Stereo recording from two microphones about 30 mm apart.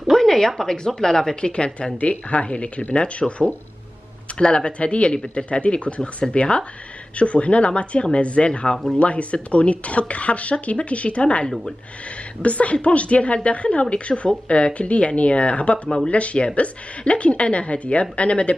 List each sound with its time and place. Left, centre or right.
0.1 s a sound: centre
0.7 s speech: centre
1.3 s a woman's voice: left
2.0 s speech: left
4.4 s a woman's voice: left